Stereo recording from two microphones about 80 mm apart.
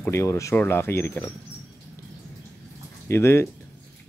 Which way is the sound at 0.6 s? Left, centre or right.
Left.